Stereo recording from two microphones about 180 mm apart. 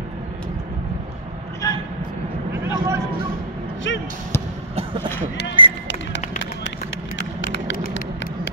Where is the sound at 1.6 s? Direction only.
20° left (ahead or behind).